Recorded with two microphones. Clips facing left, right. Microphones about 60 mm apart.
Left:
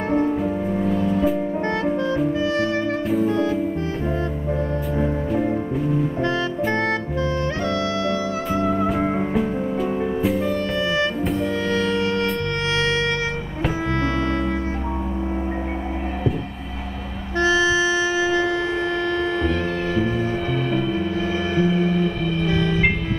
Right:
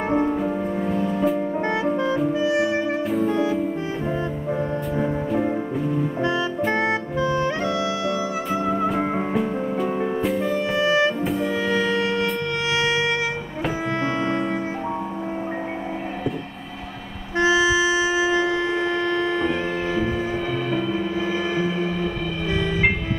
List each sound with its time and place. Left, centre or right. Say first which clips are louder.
0.1 s music: left 2 dB; centre
3.1 s music: left 2 dB; centre
6.7 s music: even; centre
17.4 s music: even; centre
21.5 s music: left 4 dB; centre